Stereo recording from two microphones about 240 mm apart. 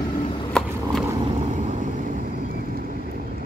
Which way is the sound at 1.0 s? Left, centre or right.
Centre.